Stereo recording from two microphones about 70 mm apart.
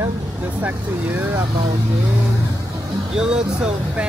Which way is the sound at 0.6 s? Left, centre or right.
Right.